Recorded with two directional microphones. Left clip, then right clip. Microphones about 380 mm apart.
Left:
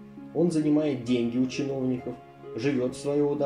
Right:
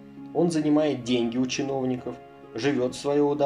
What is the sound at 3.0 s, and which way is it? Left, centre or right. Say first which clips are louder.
Speech: right 3 dB; right.